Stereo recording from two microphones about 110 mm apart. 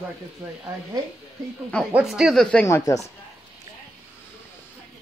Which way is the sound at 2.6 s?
30° left (ahead or behind).